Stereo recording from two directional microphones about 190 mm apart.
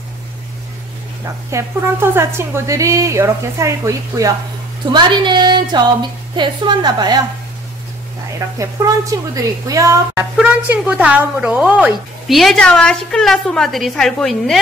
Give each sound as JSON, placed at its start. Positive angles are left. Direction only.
{"t": 1.2, "sound": "a woman's voice", "side_deg": -15}
{"t": 8.5, "sound": "a woman's voice", "side_deg": -15}